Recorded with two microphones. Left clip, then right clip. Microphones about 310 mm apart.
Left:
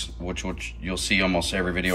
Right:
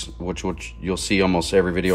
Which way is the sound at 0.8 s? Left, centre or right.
Centre.